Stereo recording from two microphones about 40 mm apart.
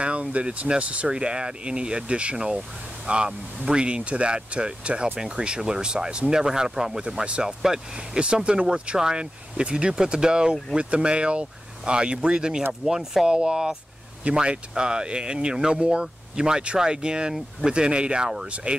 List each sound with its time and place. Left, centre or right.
0.0 s speech: right
7.2 s speech: right
7.6 s speech: centre
8.5 s speech: right
12.8 s speech: centre; by 18.8 s right